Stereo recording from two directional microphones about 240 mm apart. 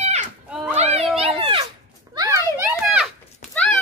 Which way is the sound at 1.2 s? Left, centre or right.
Right.